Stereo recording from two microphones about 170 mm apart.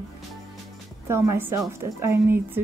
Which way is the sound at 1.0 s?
15° right (ahead or behind).